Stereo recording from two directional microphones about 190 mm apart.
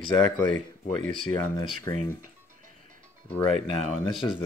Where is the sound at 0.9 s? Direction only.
45° right (ahead or behind).